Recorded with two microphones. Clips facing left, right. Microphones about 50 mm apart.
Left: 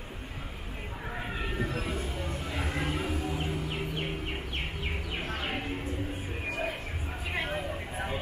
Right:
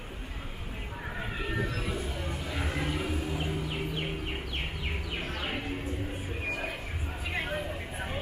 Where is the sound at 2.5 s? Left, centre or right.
Centre.